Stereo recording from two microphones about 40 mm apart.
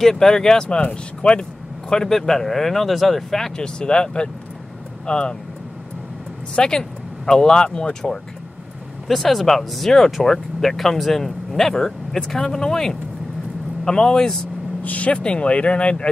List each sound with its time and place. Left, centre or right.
0.0 s speech: centre
1.9 s speech: centre
6.5 s speech: centre
9.0 s speech: centre
14.8 s speech: left